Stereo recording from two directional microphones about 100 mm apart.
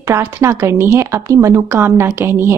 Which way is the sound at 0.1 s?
25° right (ahead or behind).